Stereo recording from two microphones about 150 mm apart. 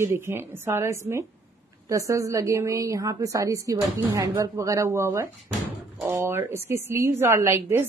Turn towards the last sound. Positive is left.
turn(degrees=-15)  # may be behind; listen again after turning